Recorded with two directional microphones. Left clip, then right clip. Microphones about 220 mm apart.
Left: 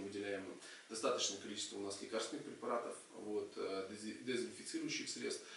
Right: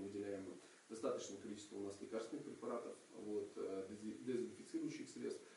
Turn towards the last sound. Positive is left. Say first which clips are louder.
# left 5 dB
turn(degrees=-5)  # may be behind; listen again after turning